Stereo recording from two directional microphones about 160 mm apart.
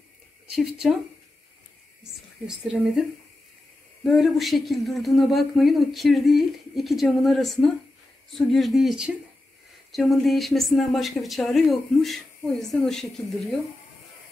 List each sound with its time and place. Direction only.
0.6 s speech: centre (ahead or behind)
2.4 s speech: 5° right (ahead or behind)